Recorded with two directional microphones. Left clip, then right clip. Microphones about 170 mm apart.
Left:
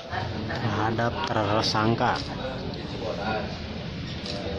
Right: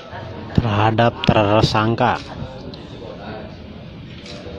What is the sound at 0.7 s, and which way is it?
A man's voice, 40° right (ahead or behind).